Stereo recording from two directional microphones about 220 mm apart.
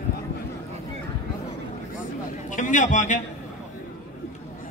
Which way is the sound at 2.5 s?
35° left (ahead or behind).